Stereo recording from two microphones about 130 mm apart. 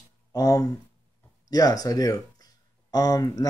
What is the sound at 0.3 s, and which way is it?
Speech, 25° left (ahead or behind).